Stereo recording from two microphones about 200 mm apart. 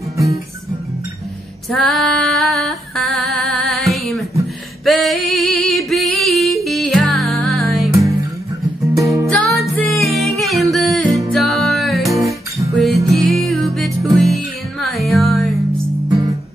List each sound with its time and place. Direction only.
1.7 s female singing: centre (ahead or behind)
7.9 s music: 15° right (ahead or behind)
9.8 s music: centre (ahead or behind)